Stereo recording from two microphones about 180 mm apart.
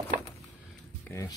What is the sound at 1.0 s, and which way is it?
Speech, 15° left (ahead or behind).